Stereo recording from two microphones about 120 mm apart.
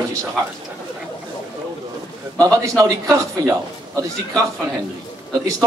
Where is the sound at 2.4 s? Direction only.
30° right (ahead or behind).